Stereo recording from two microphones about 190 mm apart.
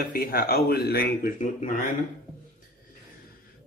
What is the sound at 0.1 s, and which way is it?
Speech, 50° left (ahead or behind).